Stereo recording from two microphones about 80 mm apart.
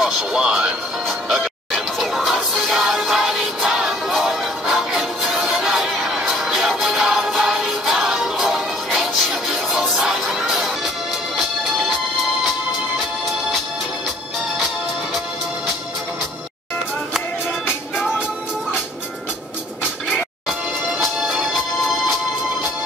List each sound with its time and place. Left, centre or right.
0.0 s music: centre
17.6 s music: centre
20.1 s music: centre